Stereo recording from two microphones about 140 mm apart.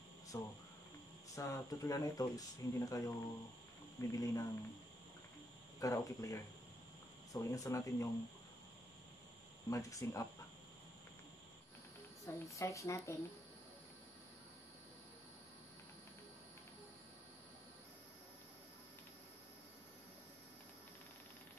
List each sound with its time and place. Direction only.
0.3 s speech: 20° left (ahead or behind)
5.8 s speech: 25° left (ahead or behind)
9.7 s speech: 25° left (ahead or behind)
12.3 s speech: 20° left (ahead or behind)